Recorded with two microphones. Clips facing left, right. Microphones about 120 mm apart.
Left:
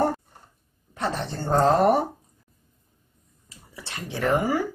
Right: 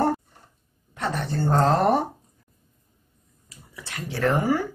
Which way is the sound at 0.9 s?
25° left (ahead or behind).